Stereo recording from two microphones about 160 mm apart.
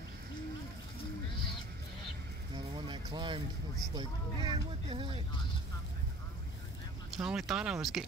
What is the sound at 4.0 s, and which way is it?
Speech, 30° right (ahead or behind).